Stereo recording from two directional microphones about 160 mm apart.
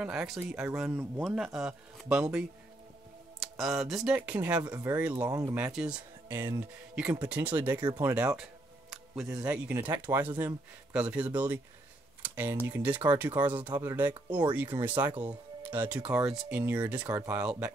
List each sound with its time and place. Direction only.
0.0 s speech: 5° right (ahead or behind)
5.6 s speech: 5° right (ahead or behind)
6.2 s speech: 15° right (ahead or behind)
12.2 s computer keyboard: 10° right (ahead or behind)
12.6 s speech: 10° right (ahead or behind)